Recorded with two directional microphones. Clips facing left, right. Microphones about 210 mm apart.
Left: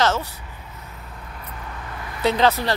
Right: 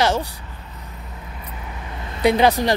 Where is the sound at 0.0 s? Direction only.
15° right (ahead or behind).